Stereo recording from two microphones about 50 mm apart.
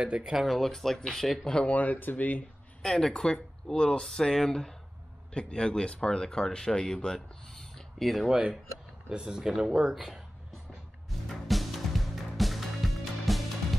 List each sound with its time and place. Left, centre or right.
0.0 s speech: centre
0.5 s speech: centre
1.5 s speech: left
2.8 s speech: centre
8.3 s speech: centre
11.1 s music: centre